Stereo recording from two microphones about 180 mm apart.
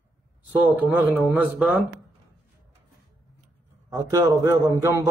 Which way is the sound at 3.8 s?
15° right (ahead or behind).